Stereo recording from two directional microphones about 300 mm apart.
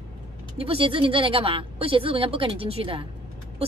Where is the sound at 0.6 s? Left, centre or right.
Centre.